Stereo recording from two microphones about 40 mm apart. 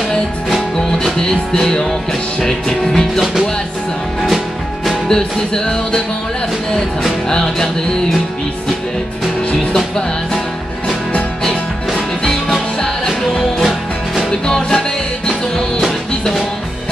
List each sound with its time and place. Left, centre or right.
1.0 s music: centre
5.0 s music: centre
7.2 s music: centre
11.4 s music: centre